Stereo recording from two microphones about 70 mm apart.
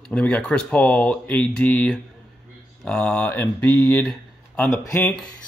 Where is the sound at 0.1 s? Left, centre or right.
Centre.